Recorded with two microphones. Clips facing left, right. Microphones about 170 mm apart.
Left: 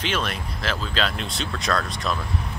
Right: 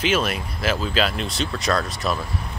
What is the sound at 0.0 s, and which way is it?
Speech, 5° right (ahead or behind).